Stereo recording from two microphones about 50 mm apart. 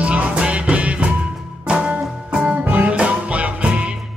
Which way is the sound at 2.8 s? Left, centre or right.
Right.